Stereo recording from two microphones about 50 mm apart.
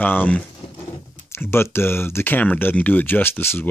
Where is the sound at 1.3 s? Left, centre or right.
Left.